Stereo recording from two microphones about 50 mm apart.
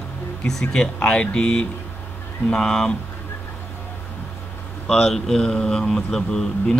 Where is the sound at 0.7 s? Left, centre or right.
Centre.